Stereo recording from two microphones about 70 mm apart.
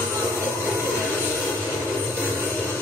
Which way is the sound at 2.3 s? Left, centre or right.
Left.